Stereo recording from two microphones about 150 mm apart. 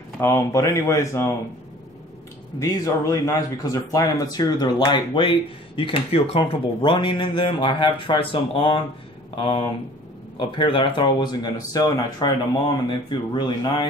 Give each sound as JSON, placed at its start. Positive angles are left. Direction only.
{"t": 0.2, "sound": "speech", "side_deg": 20}
{"t": 2.6, "sound": "speech", "side_deg": 20}